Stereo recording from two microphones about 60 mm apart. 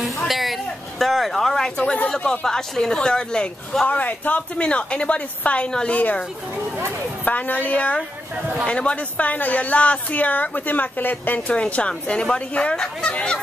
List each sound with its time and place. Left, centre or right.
0.3 s a sound: centre
1.8 s a woman's voice: left
2.0 s a woman's voice: centre
7.2 s a woman's voice: left